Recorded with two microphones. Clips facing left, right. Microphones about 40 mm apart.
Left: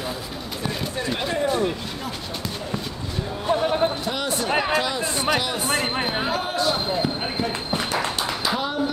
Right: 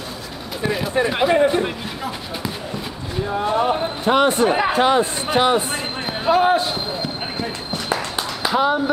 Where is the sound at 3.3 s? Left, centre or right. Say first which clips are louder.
Right 3 dB; right.